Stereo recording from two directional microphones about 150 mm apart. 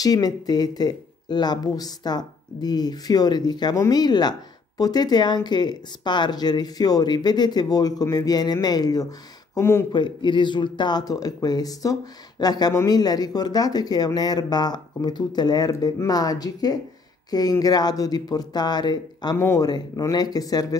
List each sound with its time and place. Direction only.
0.0 s speech: 25° left (ahead or behind)
9.9 s speech: 30° left (ahead or behind)